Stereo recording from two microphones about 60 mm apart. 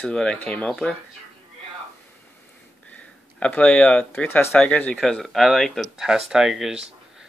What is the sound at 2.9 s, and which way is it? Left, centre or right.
Speech, left.